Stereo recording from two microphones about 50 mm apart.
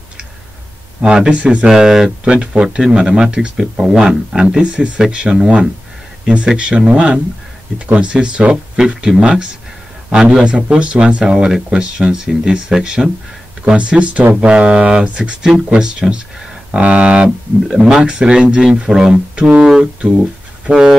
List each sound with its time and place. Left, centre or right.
1.0 s speech: centre
1.7 s speech: centre
2.3 s speech: right
10.0 s a man's voice: right